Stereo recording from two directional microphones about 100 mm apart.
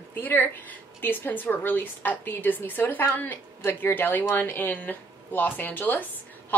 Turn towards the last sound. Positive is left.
turn(degrees=20)  # may be behind; listen again after turning